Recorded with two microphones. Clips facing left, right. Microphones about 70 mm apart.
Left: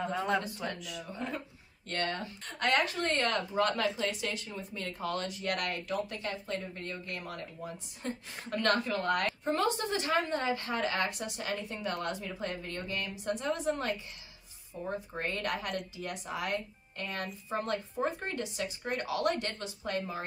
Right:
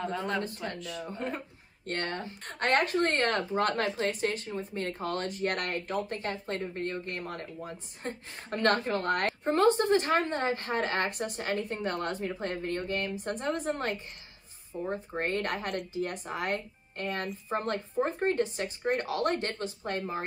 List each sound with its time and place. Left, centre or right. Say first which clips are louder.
0.3 s speech: left 1 dB; centre
1.0 s a woman's voice: right 2 dB; right